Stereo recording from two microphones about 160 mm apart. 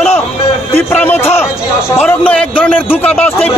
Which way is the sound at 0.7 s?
15° left (ahead or behind).